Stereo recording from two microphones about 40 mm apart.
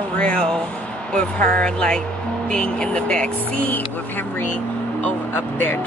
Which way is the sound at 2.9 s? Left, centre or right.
Left.